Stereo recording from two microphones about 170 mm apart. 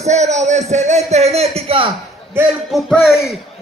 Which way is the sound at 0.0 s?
40° right (ahead or behind).